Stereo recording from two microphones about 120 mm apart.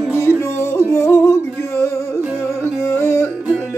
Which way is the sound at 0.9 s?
20° left (ahead or behind).